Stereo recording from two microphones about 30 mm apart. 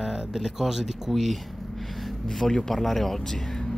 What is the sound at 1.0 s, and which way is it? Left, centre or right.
Speech, centre.